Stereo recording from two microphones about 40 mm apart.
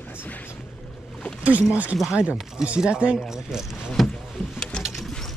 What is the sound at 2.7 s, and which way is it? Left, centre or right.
Speech, right.